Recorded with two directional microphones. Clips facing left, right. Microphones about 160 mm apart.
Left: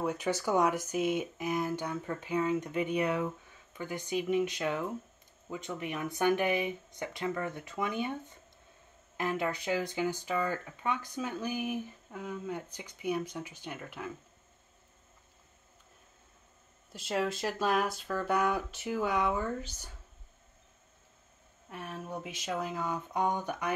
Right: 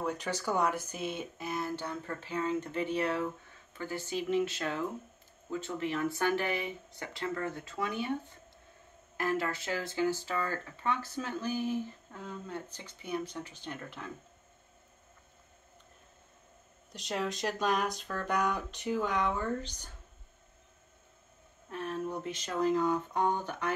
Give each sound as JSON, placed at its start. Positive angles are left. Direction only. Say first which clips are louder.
{"t": 0.0, "sound": "speech", "louder": "left 3 dB", "side_deg": 10}
{"t": 9.1, "sound": "speech", "louder": "even", "side_deg": 20}
{"t": 16.9, "sound": "speech", "louder": "left 3 dB", "side_deg": 5}
{"t": 21.6, "sound": "speech", "louder": "right 5 dB", "side_deg": 10}